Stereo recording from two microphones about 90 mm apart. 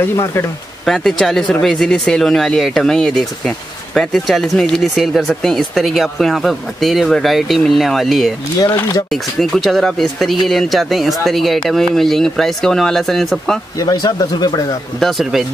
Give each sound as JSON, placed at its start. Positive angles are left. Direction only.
{"t": 0.0, "sound": "speech", "side_deg": 30}
{"t": 0.8, "sound": "speech", "side_deg": 5}
{"t": 8.7, "sound": "speech", "side_deg": 40}
{"t": 9.1, "sound": "speech", "side_deg": 0}
{"t": 13.7, "sound": "speech", "side_deg": 45}
{"t": 15.0, "sound": "speech", "side_deg": 0}